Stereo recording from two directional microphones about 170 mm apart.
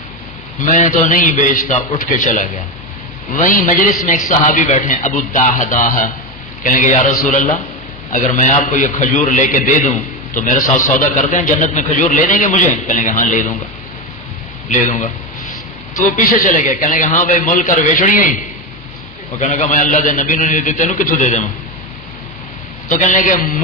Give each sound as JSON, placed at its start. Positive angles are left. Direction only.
{"t": 0.6, "sound": "a man's voice", "side_deg": 45}
{"t": 14.7, "sound": "a man's voice", "side_deg": 45}
{"t": 19.3, "sound": "a man's voice", "side_deg": 45}
{"t": 22.8, "sound": "a man's voice", "side_deg": 45}